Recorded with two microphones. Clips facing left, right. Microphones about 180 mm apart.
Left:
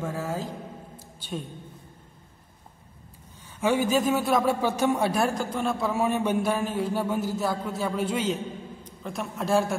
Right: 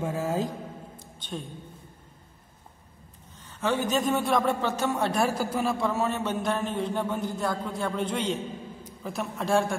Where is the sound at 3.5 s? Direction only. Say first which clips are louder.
Left 3 dB; 10° left (ahead or behind).